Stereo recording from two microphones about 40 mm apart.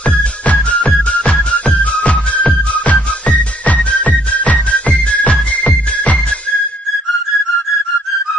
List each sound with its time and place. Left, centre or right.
0.5 s music: left